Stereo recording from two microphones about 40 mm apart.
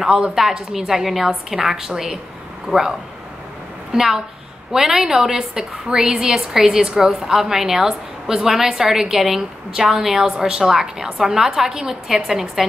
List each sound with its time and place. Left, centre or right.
0.0 s a woman's voice: centre
3.9 s a woman's voice: centre